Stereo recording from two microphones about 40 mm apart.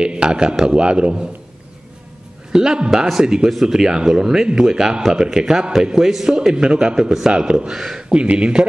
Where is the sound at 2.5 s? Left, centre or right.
Centre.